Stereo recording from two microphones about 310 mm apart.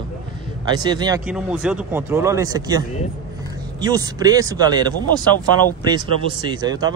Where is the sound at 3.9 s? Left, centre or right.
Centre.